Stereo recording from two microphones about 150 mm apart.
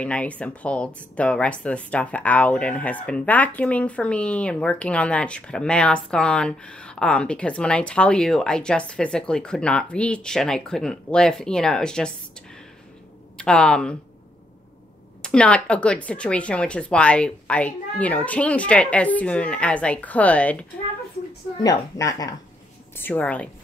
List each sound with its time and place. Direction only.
0.0 s speech: 10° left (ahead or behind)
15.2 s speech: 5° left (ahead or behind)
21.6 s a woman's voice: 25° left (ahead or behind)
22.9 s speech: 10° left (ahead or behind)